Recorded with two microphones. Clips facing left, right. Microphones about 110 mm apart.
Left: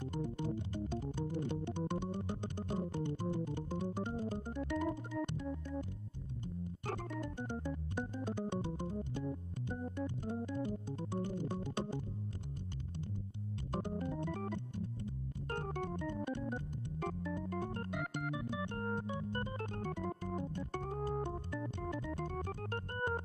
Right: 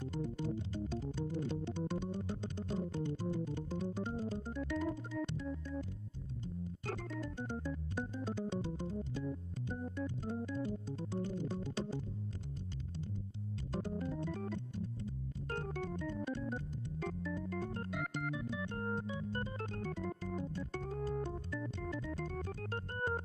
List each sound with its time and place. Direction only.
0.1 s music: 50° left (ahead or behind)
4.2 s organ: 50° left (ahead or behind)
8.4 s music: 50° left (ahead or behind)
9.7 s organ: 55° left (ahead or behind)
13.7 s organ: 50° left (ahead or behind)
17.0 s organ: 50° left (ahead or behind)